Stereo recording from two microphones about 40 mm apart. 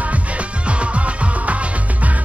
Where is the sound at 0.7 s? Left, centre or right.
Right.